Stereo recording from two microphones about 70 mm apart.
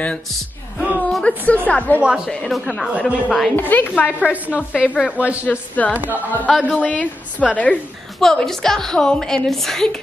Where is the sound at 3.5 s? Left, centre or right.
Left.